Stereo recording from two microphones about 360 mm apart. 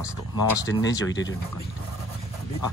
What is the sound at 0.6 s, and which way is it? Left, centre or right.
Speech, centre.